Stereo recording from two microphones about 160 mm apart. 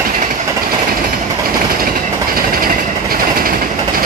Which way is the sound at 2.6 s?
65° right (ahead or behind).